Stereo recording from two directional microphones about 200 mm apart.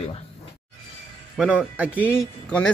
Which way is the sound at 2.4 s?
5° left (ahead or behind).